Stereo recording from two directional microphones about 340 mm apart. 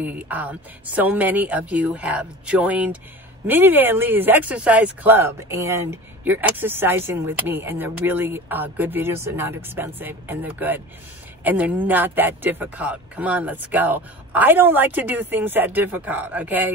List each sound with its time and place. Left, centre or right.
0.0 s speech: centre